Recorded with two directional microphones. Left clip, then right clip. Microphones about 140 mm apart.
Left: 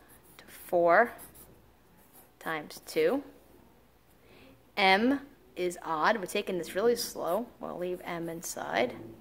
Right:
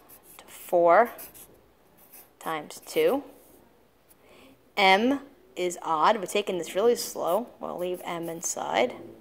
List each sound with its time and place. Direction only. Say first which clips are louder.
0.4 s a sound: right 4 dB; 10° right (ahead or behind)
2.3 s a woman's voice: right 3 dB; 15° right (ahead or behind)
4.4 s a woman's voice: right 4 dB; 20° right (ahead or behind)